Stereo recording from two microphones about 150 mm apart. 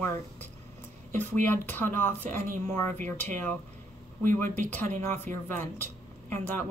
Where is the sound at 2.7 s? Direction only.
15° left (ahead or behind).